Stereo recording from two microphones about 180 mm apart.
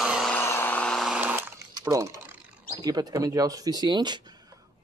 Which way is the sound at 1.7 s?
20° right (ahead or behind).